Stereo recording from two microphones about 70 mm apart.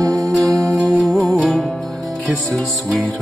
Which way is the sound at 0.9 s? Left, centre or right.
Centre.